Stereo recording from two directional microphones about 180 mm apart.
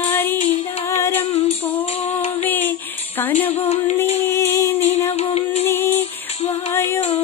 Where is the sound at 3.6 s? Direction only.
35° left (ahead or behind).